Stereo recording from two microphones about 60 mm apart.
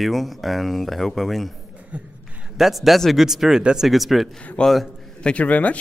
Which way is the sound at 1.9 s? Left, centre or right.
Right.